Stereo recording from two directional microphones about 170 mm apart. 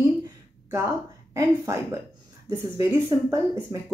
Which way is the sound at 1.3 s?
15° right (ahead or behind).